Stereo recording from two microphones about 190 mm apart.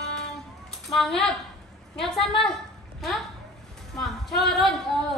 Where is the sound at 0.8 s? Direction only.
Centre (ahead or behind).